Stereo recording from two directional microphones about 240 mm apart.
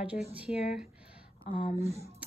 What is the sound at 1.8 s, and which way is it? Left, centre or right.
Speech, right.